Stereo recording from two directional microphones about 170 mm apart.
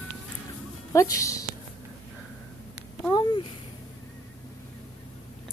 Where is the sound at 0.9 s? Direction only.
20° left (ahead or behind).